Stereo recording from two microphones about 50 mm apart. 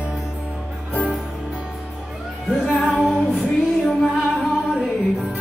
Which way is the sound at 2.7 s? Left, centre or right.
Left.